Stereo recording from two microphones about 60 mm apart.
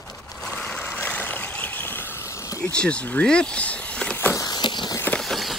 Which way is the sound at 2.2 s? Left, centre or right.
Left.